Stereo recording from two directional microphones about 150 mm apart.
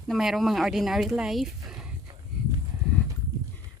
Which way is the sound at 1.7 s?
5° right (ahead or behind).